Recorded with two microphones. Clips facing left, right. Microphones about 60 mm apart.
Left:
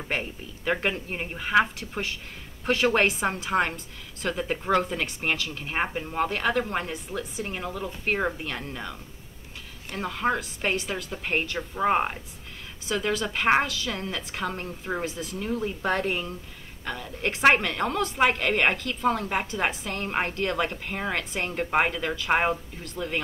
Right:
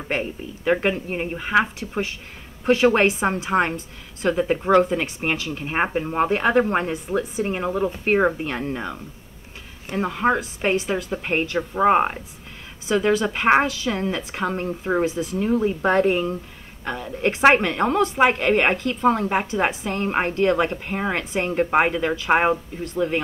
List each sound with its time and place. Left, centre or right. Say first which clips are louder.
0.1 s a woman's voice: right 6 dB; centre